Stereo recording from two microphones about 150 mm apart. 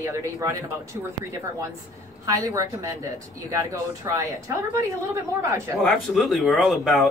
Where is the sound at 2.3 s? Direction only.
25° right (ahead or behind).